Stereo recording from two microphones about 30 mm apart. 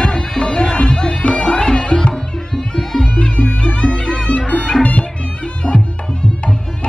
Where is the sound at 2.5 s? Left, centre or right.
Centre.